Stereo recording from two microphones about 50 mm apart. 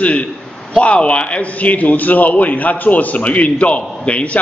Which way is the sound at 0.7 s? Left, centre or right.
Left.